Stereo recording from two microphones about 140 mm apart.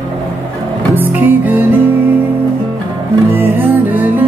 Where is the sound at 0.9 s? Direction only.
15° right (ahead or behind).